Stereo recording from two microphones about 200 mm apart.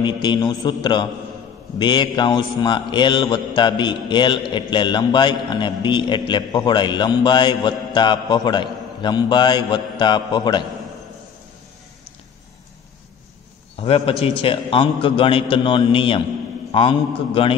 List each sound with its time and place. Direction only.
0.0 s mantra: 20° left (ahead or behind)
13.7 s mantra: 30° left (ahead or behind)